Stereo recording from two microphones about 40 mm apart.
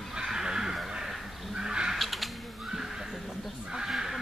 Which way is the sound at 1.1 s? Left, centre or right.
Centre.